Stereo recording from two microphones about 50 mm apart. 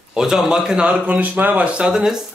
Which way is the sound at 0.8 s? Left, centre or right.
Right.